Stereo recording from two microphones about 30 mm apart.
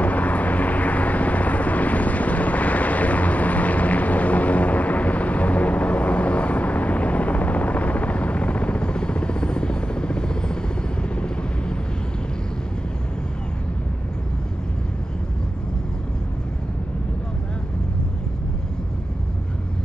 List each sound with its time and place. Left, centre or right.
0.0 s vehicle: left